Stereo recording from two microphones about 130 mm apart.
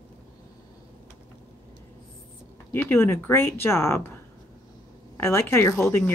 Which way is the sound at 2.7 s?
15° left (ahead or behind).